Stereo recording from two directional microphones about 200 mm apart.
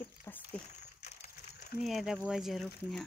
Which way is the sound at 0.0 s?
10° left (ahead or behind).